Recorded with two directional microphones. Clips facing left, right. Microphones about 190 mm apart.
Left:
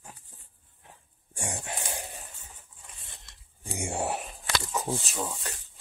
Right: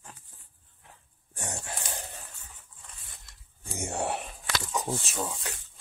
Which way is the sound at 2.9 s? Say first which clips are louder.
Left 2 dB; 25° left (ahead or behind).